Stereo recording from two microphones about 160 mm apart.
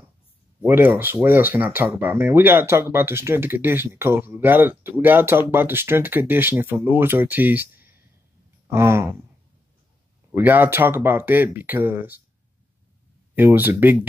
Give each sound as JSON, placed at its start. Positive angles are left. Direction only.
{"t": 0.6, "sound": "speech", "side_deg": -10}
{"t": 10.3, "sound": "speech", "side_deg": -10}
{"t": 13.3, "sound": "speech", "side_deg": -10}